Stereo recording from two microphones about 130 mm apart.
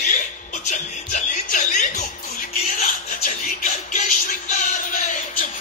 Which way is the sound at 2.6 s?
75° left (ahead or behind).